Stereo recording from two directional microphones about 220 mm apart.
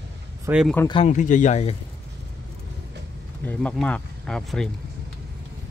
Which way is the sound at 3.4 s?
5° left (ahead or behind).